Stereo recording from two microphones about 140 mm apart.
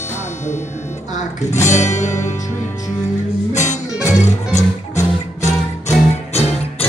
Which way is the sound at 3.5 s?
60° left (ahead or behind).